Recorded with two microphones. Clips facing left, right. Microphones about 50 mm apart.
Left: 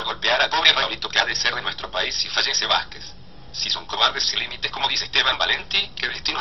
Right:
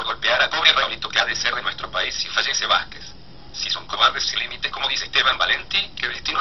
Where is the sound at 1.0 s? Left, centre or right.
Centre.